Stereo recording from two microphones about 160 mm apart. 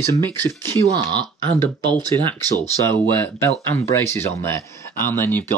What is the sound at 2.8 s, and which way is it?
Speech, 15° left (ahead or behind).